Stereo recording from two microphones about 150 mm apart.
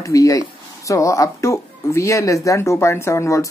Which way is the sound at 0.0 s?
20° left (ahead or behind).